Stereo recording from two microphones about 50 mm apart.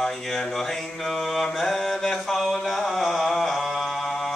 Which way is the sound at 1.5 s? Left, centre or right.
Centre.